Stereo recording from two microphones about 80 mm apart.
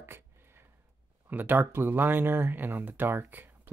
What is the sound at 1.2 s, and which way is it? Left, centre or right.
Speech, right.